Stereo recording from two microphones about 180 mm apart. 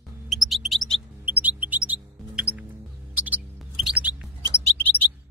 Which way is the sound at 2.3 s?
10° right (ahead or behind).